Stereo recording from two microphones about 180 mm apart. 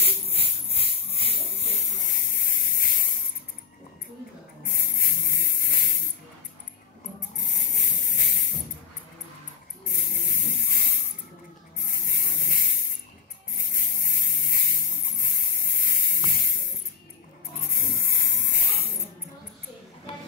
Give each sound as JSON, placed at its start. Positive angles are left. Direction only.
{"t": 0.0, "sound": "music", "side_deg": 35}
{"t": 4.6, "sound": "spray", "side_deg": 55}
{"t": 7.3, "sound": "a sound", "side_deg": 55}
{"t": 9.8, "sound": "electric toothbrush", "side_deg": 55}
{"t": 11.8, "sound": "spray", "side_deg": 55}
{"t": 13.6, "sound": "a sound", "side_deg": 50}
{"t": 17.6, "sound": "spray", "side_deg": 55}